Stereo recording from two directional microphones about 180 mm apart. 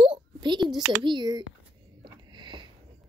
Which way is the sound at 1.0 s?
25° right (ahead or behind).